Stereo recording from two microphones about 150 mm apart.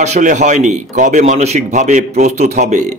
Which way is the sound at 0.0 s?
55° right (ahead or behind).